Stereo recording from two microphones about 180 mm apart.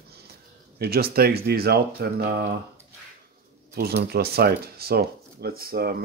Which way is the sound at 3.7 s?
60° right (ahead or behind).